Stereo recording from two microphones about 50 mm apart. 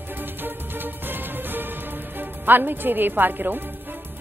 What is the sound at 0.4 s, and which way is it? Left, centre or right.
Music, right.